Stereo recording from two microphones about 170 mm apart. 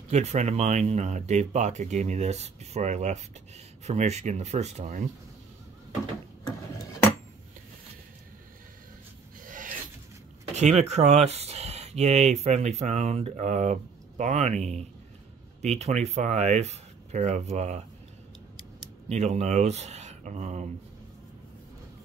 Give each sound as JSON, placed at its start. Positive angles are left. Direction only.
{"t": 0.1, "sound": "speech", "side_deg": -40}
{"t": 9.4, "sound": "filing", "side_deg": -55}
{"t": 10.5, "sound": "speech", "side_deg": -40}
{"t": 19.0, "sound": "speech", "side_deg": -40}